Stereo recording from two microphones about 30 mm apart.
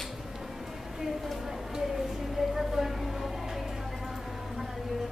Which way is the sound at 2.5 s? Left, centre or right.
Centre.